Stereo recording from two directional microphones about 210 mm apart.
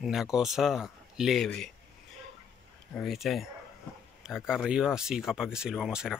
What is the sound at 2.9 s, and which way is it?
Speech, centre (ahead or behind).